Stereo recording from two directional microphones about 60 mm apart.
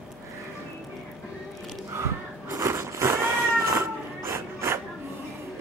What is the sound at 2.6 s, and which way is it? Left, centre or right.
Cat, right.